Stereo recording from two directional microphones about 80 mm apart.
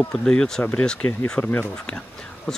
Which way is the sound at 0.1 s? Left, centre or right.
Centre.